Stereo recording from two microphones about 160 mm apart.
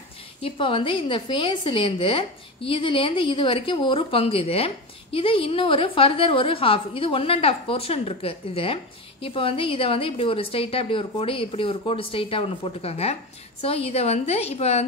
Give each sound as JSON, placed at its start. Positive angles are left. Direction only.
{"t": 0.4, "sound": "a woman's voice", "side_deg": 35}